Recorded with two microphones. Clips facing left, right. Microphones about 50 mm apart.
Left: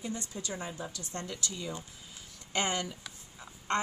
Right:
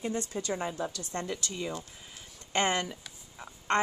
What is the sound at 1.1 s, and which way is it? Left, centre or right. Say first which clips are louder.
A woman's voice: right 3 dB; right.